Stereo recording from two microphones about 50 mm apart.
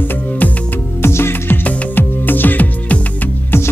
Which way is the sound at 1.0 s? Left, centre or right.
Left.